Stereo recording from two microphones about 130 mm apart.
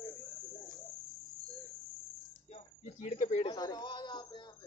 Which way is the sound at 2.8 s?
60° left (ahead or behind).